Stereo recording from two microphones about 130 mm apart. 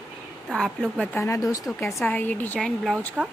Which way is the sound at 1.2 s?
25° left (ahead or behind).